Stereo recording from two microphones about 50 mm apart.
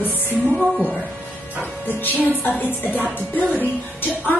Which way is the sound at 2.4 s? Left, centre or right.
Left.